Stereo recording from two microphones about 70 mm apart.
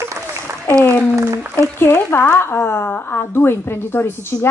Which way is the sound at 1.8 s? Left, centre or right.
Left.